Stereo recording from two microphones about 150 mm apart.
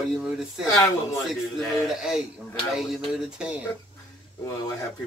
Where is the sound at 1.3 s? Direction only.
Centre (ahead or behind).